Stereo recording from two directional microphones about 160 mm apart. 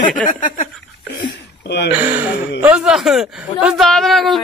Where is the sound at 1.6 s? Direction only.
90° left.